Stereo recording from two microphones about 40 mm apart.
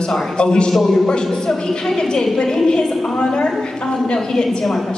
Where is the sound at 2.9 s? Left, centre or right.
Centre.